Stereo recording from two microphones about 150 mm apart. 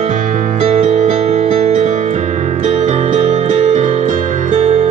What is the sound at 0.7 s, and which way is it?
Music, 45° right (ahead or behind).